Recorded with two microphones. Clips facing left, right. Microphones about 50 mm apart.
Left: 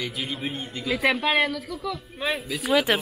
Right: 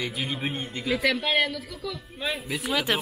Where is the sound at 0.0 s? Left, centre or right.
Right.